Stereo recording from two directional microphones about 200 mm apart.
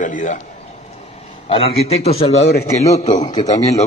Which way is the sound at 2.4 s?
55° left (ahead or behind).